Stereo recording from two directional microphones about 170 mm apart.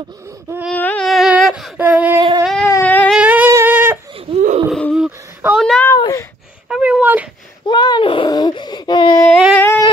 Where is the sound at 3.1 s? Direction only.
10° right (ahead or behind).